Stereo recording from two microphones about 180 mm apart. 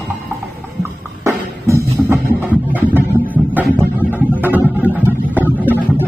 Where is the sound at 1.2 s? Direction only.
15° right (ahead or behind).